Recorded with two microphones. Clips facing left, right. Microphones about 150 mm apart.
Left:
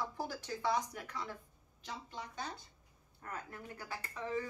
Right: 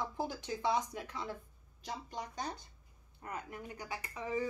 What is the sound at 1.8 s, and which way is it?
Speech, 40° right (ahead or behind).